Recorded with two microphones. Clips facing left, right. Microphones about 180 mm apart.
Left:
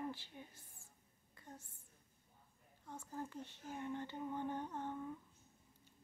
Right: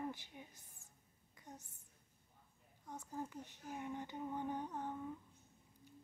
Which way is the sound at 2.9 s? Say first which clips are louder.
Right 1 dB; 15° right (ahead or behind).